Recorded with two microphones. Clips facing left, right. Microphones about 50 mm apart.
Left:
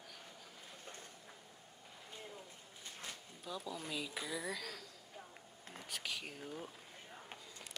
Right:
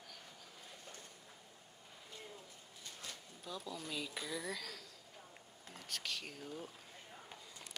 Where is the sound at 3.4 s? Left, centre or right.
Centre.